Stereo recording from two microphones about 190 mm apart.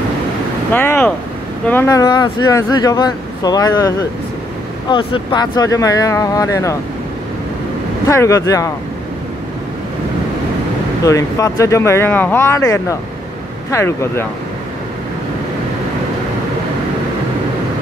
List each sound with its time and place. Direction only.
0.7 s speech: 10° left (ahead or behind)
8.1 s speech: 15° left (ahead or behind)
11.1 s speech: 15° left (ahead or behind)